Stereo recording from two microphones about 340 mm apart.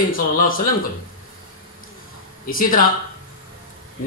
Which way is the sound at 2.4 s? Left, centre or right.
Left.